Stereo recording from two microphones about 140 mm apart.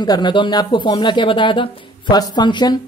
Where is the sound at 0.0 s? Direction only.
30° left (ahead or behind).